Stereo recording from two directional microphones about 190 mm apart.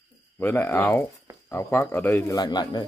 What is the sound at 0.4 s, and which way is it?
Speech, 10° left (ahead or behind).